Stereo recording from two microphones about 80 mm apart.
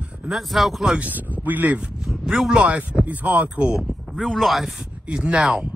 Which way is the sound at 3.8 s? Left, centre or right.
Centre.